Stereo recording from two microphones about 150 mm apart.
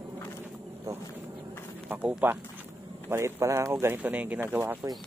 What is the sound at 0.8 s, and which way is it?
Insect, 15° right (ahead or behind).